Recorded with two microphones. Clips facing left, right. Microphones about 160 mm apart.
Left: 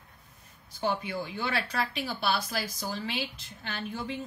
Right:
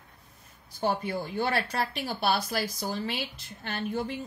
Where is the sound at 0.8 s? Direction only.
45° right (ahead or behind).